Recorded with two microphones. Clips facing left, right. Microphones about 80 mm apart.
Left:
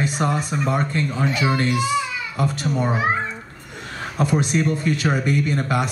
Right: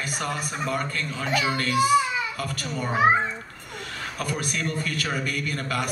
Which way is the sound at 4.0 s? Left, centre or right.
Left.